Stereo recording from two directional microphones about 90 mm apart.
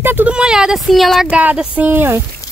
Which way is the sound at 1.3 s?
10° right (ahead or behind).